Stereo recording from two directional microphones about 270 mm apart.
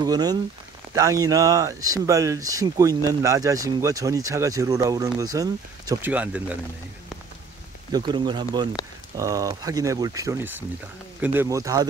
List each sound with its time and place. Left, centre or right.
0.0 s speech: centre
7.9 s speech: centre